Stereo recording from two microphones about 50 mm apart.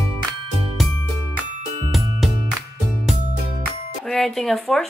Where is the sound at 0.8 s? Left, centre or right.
Centre.